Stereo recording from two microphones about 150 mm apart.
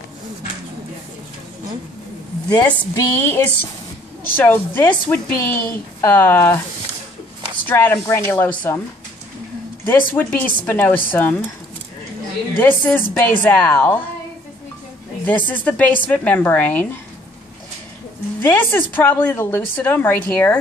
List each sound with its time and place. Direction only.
2.5 s speech: 25° left (ahead or behind)
3.2 s a woman's voice: 15° left (ahead or behind)
7.6 s a woman's voice: 15° left (ahead or behind)
9.8 s a woman's voice: 10° left (ahead or behind)
12.5 s a woman's voice: 15° left (ahead or behind)
15.2 s a woman's voice: 10° left (ahead or behind)
18.4 s a woman's voice: 15° left (ahead or behind)